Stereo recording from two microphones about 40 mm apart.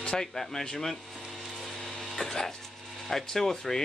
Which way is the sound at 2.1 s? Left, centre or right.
Centre.